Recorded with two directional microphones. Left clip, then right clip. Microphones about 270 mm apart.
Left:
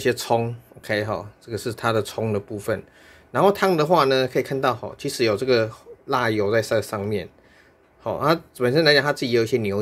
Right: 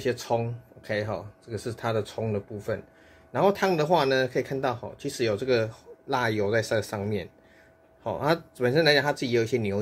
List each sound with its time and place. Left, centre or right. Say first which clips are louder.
0.0 s speech: left 6 dB; centre